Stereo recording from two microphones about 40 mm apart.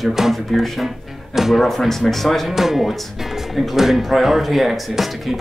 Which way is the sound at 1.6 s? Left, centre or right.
Centre.